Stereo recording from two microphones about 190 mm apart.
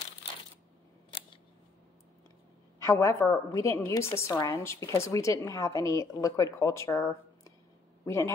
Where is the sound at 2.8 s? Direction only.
15° left (ahead or behind).